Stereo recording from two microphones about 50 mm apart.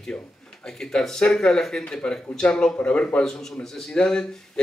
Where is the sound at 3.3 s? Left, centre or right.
Centre.